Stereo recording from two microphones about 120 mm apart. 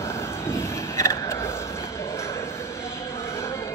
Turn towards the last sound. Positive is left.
turn(degrees=20)  # may be behind; listen again after turning